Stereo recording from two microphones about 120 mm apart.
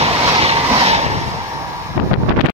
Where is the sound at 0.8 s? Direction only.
60° right (ahead or behind).